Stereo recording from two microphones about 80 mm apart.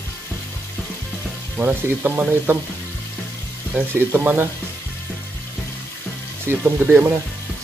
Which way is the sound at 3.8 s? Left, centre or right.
Right.